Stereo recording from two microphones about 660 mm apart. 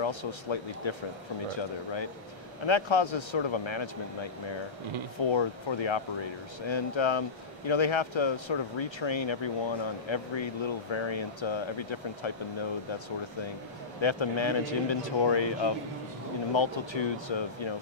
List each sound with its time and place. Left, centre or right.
0.0 s speech: left
2.6 s speech: left
14.0 s speech: left